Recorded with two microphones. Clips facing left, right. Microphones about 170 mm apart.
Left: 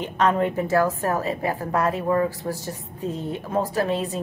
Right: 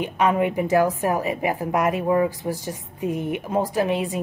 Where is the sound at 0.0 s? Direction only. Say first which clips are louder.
Right 1 dB; 10° right (ahead or behind).